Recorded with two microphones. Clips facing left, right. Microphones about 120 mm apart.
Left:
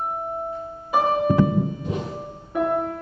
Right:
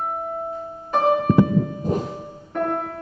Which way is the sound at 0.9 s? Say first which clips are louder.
Right 1 dB; 10° left (ahead or behind).